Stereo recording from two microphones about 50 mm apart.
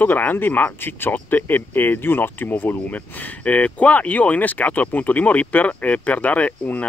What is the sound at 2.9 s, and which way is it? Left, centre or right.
Speech, left.